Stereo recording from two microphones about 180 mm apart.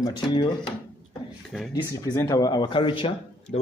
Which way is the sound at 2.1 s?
20° left (ahead or behind).